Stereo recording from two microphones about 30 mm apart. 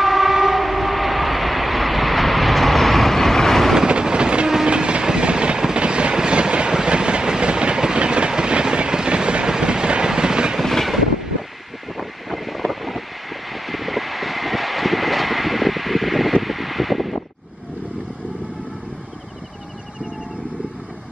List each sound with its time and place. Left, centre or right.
0.0 s train: centre
3.8 s train: right
10.6 s vehicle: centre
12.0 s vehicle: centre